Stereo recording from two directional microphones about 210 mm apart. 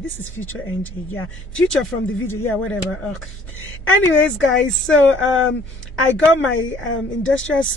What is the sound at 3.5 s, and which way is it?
A woman's voice, 65° left (ahead or behind).